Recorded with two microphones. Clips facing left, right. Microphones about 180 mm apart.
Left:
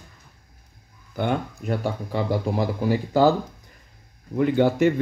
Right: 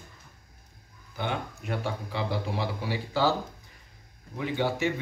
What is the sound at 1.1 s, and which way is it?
Speech, 50° left (ahead or behind).